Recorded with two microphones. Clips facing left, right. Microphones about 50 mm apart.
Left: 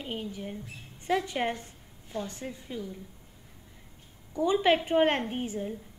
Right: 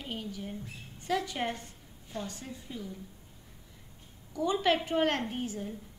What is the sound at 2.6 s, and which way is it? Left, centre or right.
Speech, centre.